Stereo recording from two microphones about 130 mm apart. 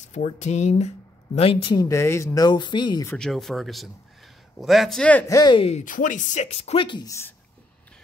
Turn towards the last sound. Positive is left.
turn(degrees=35)  # may be behind; listen again after turning